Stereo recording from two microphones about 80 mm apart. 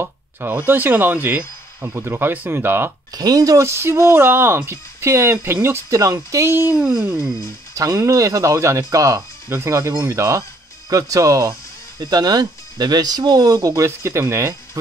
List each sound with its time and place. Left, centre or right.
0.0 s speech: right
3.2 s speech: right
3.6 s speech: right
5.9 s speech: right
6.5 s speech: right
6.8 s speech: centre
7.7 s speech: right
12.0 s speech: right